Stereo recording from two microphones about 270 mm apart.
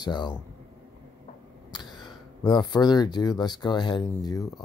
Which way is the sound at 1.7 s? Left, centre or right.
Centre.